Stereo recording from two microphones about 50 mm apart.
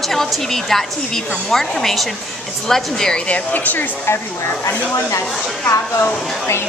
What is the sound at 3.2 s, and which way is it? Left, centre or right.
Speech, left.